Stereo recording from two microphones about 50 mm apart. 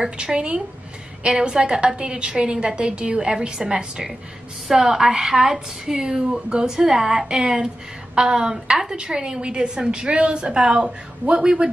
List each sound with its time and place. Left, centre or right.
0.0 s speech: centre